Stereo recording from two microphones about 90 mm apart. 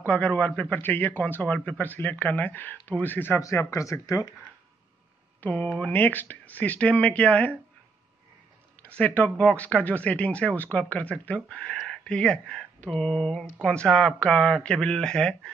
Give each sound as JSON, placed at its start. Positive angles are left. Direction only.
{"t": 0.0, "sound": "a man's voice", "side_deg": 20}
{"t": 3.3, "sound": "speech", "side_deg": 35}
{"t": 5.4, "sound": "speech", "side_deg": 15}
{"t": 8.8, "sound": "speech", "side_deg": 15}